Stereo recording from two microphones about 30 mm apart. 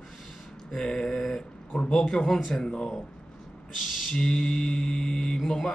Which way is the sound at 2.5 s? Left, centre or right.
Left.